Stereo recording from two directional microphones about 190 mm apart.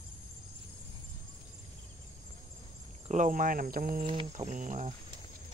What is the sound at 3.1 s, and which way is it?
Speech, 40° right (ahead or behind).